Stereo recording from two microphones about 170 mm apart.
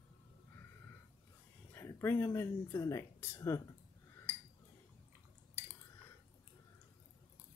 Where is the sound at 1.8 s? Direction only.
15° left (ahead or behind).